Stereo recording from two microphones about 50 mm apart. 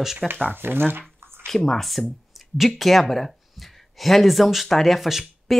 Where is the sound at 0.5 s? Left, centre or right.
Right.